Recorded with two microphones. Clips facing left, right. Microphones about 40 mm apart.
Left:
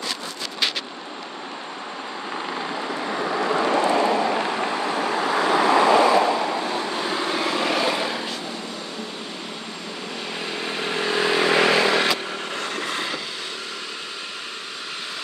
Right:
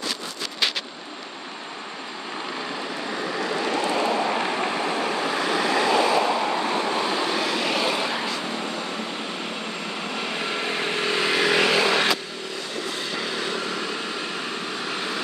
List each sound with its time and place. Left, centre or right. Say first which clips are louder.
2.9 s vehicle: left 5 dB; centre
3.9 s vehicle: left 3 dB; centre
6.0 s waves: left 3 dB; centre
7.4 s vehicle: left 2 dB; left
7.8 s vehicle: left 1 dB; centre
10.4 s vehicle: even; centre
11.3 s vehicle: left 2 dB; centre